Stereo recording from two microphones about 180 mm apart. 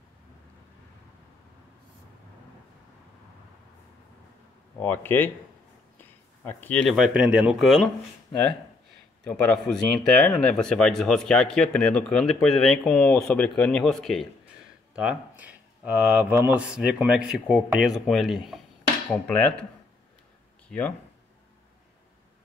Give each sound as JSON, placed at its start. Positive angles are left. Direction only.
{"t": 4.7, "sound": "speech", "side_deg": 10}
{"t": 9.2, "sound": "speech", "side_deg": 5}
{"t": 20.6, "sound": "speech", "side_deg": 5}